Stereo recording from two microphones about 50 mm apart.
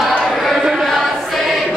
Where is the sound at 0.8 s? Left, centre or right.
Centre.